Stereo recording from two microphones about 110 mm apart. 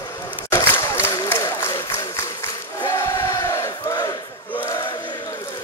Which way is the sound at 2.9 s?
30° left (ahead or behind).